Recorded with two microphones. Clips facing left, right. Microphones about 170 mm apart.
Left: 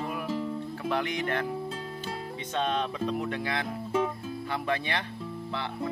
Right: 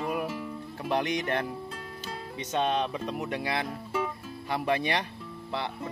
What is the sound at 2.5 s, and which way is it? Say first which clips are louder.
Speech: right 2 dB; 15° right (ahead or behind).